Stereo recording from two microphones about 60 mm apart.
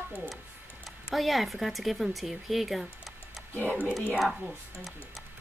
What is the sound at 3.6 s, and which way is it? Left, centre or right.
Speech, right.